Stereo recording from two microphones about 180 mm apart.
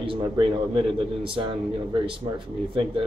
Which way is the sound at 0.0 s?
30° right (ahead or behind).